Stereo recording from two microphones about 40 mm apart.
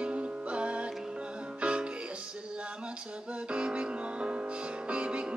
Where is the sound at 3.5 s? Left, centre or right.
Right.